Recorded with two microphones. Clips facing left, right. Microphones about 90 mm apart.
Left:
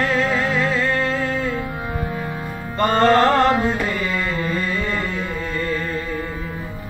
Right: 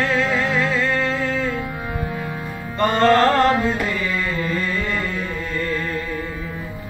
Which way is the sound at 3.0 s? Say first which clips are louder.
Even; 20° left (ahead or behind).